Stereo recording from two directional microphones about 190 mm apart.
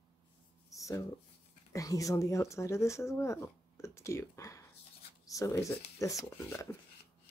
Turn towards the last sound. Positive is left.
turn(degrees=15)  # may be behind; listen again after turning